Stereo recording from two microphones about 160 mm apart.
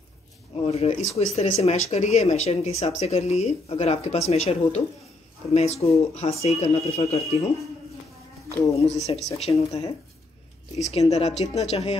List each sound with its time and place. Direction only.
0.7 s speech: 40° left (ahead or behind)
8.5 s speech: 20° left (ahead or behind)
8.8 s speech: 40° left (ahead or behind)
10.8 s speech: 40° left (ahead or behind)